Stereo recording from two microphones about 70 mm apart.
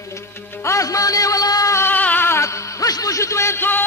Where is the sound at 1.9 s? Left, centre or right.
Left.